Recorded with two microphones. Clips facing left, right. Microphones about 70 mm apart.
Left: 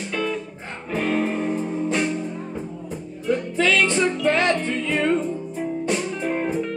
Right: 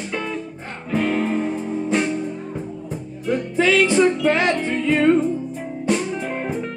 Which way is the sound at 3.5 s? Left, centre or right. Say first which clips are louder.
Right 4 dB; centre.